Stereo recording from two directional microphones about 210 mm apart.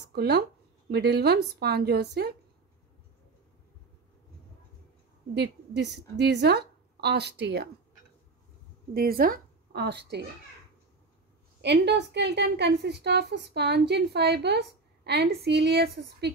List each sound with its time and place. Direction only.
0.1 s a woman's voice: 50° right (ahead or behind)
5.8 s a woman's voice: 55° right (ahead or behind)
8.9 s a woman's voice: 45° right (ahead or behind)
11.6 s a woman's voice: 55° right (ahead or behind)